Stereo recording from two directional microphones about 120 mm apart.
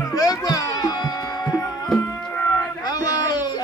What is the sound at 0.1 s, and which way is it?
Music, 30° left (ahead or behind).